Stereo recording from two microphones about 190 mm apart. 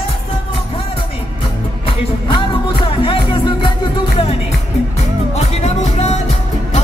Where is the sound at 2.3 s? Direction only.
25° left (ahead or behind).